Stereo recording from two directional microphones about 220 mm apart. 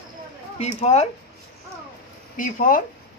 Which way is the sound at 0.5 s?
30° left (ahead or behind).